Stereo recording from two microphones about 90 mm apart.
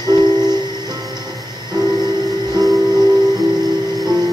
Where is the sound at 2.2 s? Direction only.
45° right (ahead or behind).